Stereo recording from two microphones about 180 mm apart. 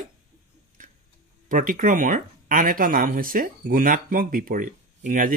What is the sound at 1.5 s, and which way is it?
Speech, 50° right (ahead or behind).